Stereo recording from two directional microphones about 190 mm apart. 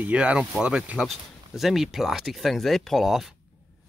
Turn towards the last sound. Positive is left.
turn(degrees=0)  # may be behind; listen again after turning